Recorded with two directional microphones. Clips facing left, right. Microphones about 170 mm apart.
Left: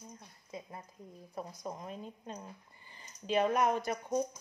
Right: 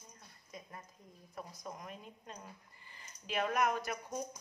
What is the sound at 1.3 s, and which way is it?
A woman's voice, 25° left (ahead or behind).